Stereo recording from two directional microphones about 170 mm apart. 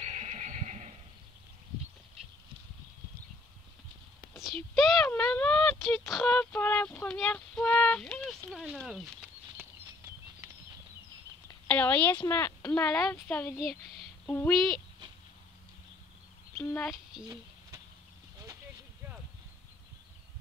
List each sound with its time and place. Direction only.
0.0 s music: 40° right (ahead or behind)
4.6 s a sound: centre (ahead or behind)
6.0 s female singing: 5° left (ahead or behind); by 10.5 s 15° right (ahead or behind)
11.4 s speech: 10° left (ahead or behind)
16.7 s speech: 5° left (ahead or behind)